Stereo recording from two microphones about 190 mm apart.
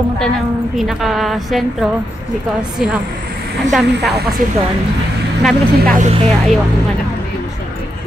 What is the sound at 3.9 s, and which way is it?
Speech, 60° right (ahead or behind).